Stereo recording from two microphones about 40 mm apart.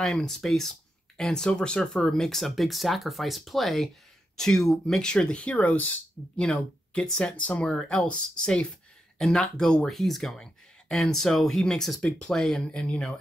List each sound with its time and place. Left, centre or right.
0.0 s speech: centre; by 1.9 s left
2.0 s speech: centre
5.0 s speech: left
6.3 s speech: left
7.3 s speech: left
7.6 s speech: left
9.8 s speech: centre
12.8 s speech: left